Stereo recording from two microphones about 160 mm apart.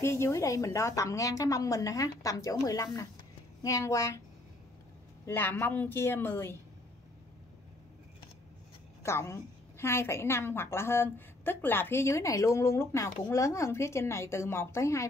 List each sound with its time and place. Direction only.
0.0 s a woman's voice: 15° left (ahead or behind)
5.2 s a woman's voice: 10° left (ahead or behind)
9.0 s a woman's voice: 15° left (ahead or behind)